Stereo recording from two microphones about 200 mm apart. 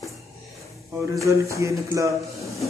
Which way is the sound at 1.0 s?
15° right (ahead or behind).